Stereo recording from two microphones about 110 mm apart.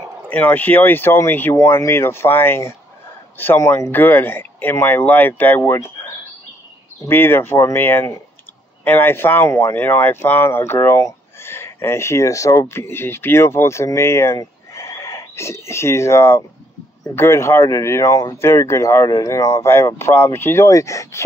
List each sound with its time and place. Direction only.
0.3 s speech: 15° left (ahead or behind)
7.1 s speech: 20° left (ahead or behind)